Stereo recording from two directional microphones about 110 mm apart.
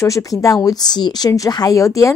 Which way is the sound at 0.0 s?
30° left (ahead or behind).